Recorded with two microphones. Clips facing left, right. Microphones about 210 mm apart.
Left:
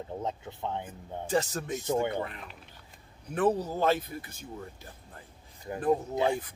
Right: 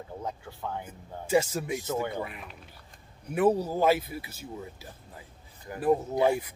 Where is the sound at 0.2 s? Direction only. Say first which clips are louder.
Even; 20° left (ahead or behind).